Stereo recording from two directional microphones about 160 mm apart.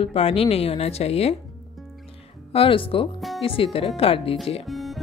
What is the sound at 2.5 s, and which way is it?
Speech, 35° left (ahead or behind).